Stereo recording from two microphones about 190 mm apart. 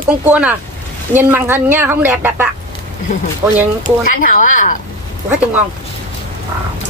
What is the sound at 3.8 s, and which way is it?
Speech, 45° left (ahead or behind).